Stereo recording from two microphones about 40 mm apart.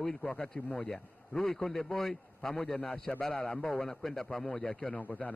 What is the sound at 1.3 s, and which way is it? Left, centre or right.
A man's voice, centre.